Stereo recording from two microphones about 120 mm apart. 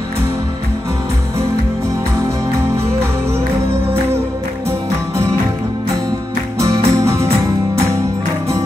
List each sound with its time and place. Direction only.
6.6 s music: 25° right (ahead or behind)